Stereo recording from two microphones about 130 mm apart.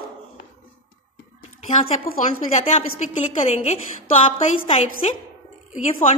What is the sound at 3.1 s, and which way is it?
Speech, 60° left (ahead or behind).